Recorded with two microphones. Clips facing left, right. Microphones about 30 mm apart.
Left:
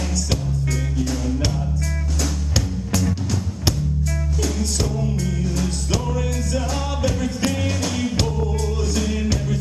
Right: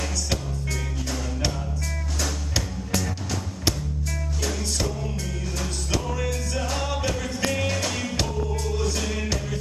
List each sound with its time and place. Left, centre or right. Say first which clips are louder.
6.1 s music: left 4 dB; centre
7.5 s music: left 2 dB; centre